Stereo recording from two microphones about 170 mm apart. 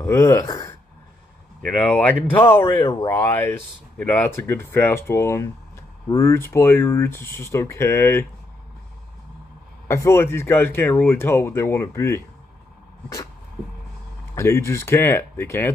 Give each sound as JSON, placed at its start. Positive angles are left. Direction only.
{"t": 0.0, "sound": "speech", "side_deg": 15}
{"t": 1.9, "sound": "speech", "side_deg": 10}
{"t": 2.6, "sound": "speech", "side_deg": 25}
{"t": 9.8, "sound": "speech", "side_deg": 15}
{"t": 14.3, "sound": "speech", "side_deg": 15}